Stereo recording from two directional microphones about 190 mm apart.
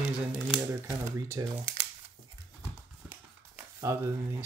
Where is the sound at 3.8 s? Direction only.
15° right (ahead or behind).